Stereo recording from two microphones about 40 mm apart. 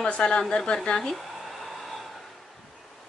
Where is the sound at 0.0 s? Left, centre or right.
Left.